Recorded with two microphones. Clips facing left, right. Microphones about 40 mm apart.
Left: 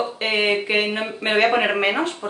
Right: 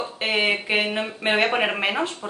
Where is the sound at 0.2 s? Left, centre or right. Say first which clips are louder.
Left 1 dB; centre.